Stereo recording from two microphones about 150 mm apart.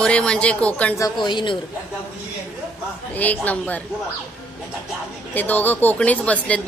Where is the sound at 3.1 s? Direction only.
10° left (ahead or behind).